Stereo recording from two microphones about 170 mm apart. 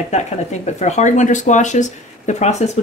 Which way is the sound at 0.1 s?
40° left (ahead or behind).